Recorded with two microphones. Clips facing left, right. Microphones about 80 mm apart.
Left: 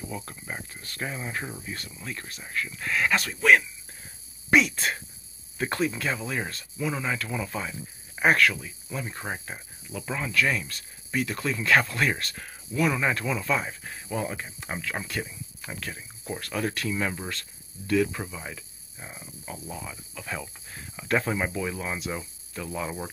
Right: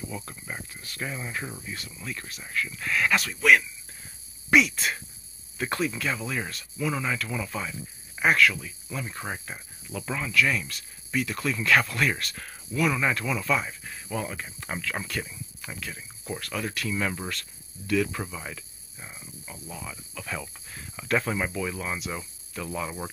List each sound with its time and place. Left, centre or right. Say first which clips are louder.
0.7 s speech: even; left
1.0 s speech: left 1 dB; left
2.1 s speech: right 1 dB; left
8.2 s speech: even; left
8.5 s speech: even; centre
10.3 s speech: right 1 dB; left
16.9 s speech: even; centre
17.3 s speech: even; left
18.2 s speech: right 1 dB; centre
19.4 s speech: left 6 dB; left
19.8 s speech: even; centre
22.5 s speech: right 1 dB; left